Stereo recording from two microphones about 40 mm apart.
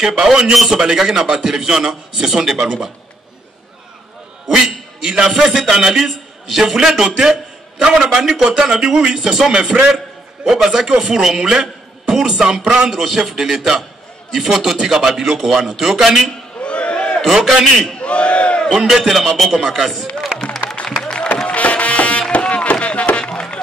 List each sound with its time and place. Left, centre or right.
0.0 s a man's voice: centre
4.5 s a man's voice: centre
8.1 s a man's voice: centre
16.6 s a sound: left
17.8 s battle cry: left
18.9 s speech: centre
21.5 s music: left
22.3 s a sound: left